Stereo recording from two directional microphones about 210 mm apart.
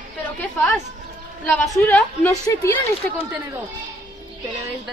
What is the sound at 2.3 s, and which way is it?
Speech, 15° left (ahead or behind).